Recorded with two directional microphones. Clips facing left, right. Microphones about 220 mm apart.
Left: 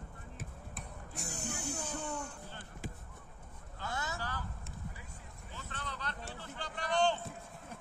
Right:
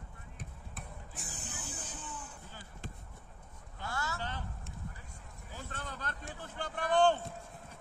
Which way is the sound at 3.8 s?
20° left (ahead or behind).